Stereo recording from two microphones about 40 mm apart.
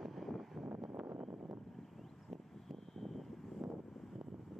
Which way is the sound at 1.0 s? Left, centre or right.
Right.